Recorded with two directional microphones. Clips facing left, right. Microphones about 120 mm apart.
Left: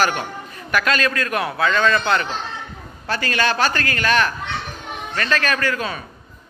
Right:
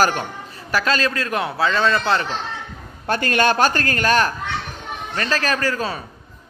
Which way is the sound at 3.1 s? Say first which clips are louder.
Right 3 dB; 50° right (ahead or behind).